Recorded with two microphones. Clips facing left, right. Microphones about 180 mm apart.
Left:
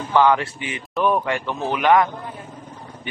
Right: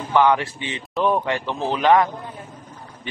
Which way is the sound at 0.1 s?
15° right (ahead or behind).